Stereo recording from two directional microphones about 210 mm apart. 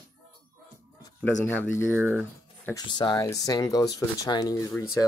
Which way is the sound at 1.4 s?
10° left (ahead or behind).